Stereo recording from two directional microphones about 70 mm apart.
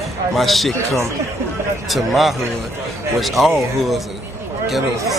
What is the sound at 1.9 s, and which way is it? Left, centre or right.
Speech, centre.